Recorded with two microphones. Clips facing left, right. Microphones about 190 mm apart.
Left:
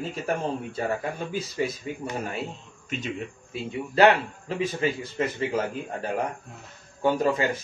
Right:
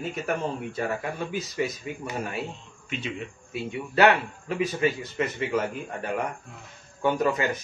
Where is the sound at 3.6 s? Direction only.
30° left (ahead or behind).